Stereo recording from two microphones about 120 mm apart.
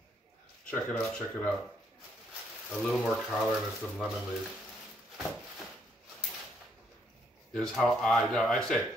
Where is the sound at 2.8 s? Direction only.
Centre (ahead or behind).